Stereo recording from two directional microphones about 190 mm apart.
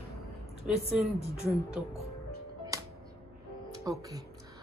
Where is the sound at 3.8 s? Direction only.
20° right (ahead or behind).